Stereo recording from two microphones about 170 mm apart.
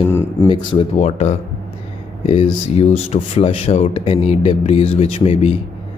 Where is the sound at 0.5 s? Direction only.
30° left (ahead or behind).